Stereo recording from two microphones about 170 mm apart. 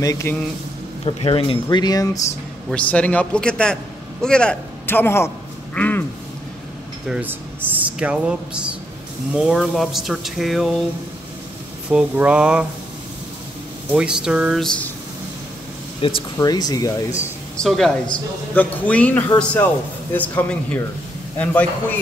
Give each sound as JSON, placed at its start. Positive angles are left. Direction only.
{"t": 0.0, "sound": "speech", "side_deg": 20}
{"t": 1.0, "sound": "speech", "side_deg": 35}
{"t": 2.7, "sound": "a man's voice", "side_deg": 10}
{"t": 7.1, "sound": "speech", "side_deg": -10}
{"t": 11.9, "sound": "speech", "side_deg": -5}
{"t": 13.9, "sound": "speech", "side_deg": -5}
{"t": 16.0, "sound": "speech", "side_deg": 30}
{"t": 17.6, "sound": "a man's voice", "side_deg": 0}